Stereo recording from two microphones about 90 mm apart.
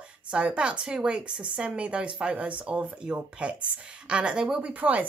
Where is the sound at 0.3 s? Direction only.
10° right (ahead or behind).